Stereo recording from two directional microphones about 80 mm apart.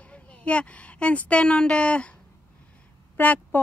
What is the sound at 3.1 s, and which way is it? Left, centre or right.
Speech, left.